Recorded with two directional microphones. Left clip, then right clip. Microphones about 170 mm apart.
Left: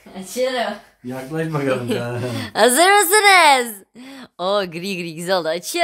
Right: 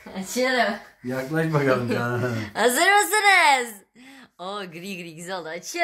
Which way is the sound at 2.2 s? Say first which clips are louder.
Left 8 dB; 80° left.